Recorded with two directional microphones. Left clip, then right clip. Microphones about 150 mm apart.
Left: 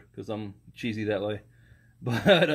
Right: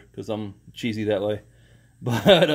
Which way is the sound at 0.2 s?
20° right (ahead or behind).